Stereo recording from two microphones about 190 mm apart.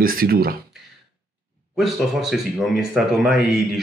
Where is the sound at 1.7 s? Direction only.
Centre (ahead or behind).